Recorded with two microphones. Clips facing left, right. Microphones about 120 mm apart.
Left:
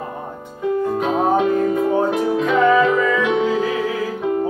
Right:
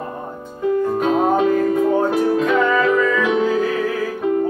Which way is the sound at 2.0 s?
25° left (ahead or behind).